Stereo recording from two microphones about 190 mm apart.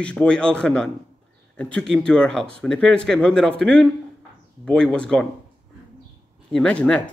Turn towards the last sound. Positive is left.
turn(degrees=5)  # may be behind; listen again after turning